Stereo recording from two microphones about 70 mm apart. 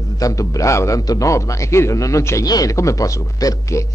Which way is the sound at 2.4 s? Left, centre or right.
Left.